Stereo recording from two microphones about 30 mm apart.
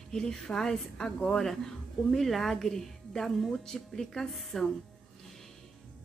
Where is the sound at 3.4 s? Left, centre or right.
Centre.